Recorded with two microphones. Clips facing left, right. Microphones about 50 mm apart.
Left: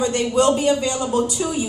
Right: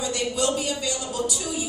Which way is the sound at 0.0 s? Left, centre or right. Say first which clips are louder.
Left 8 dB; left.